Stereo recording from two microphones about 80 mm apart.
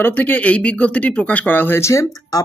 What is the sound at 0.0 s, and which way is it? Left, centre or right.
Speech, left.